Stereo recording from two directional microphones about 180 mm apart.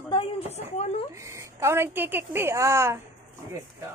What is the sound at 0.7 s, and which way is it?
Speech, 35° left (ahead or behind).